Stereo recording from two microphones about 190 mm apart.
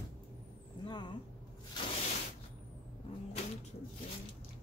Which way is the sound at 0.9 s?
25° left (ahead or behind).